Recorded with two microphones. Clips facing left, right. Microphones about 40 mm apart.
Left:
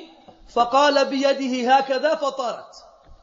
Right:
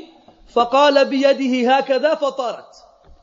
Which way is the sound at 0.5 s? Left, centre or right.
Right.